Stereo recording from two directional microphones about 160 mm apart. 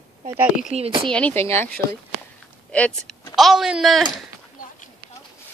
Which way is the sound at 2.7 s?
5° left (ahead or behind).